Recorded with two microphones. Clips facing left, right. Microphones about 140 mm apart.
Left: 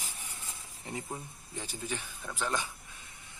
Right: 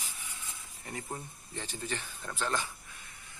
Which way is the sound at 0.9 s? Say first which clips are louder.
Left 2 dB; 20° left (ahead or behind).